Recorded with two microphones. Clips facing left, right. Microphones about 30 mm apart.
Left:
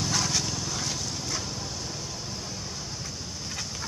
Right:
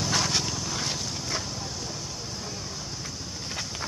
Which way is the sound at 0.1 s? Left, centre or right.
Right.